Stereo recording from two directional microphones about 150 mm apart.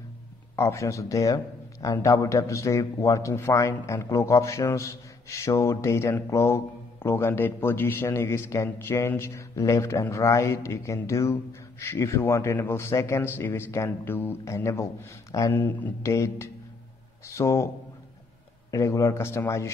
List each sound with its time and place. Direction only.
0.6 s a man's voice: 20° left (ahead or behind)
18.7 s a man's voice: 20° left (ahead or behind)